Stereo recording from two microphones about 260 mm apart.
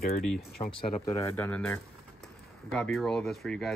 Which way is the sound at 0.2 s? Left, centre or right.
Centre.